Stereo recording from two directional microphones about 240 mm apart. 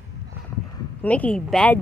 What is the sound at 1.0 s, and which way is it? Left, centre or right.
Speech, centre.